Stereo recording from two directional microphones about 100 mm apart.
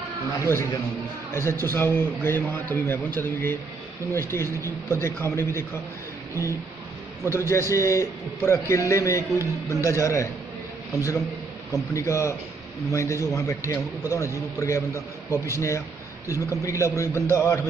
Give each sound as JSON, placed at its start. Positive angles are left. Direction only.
{"t": 0.4, "sound": "a man's voice", "side_deg": 25}
{"t": 7.2, "sound": "a man's voice", "side_deg": 25}
{"t": 11.7, "sound": "a man's voice", "side_deg": 30}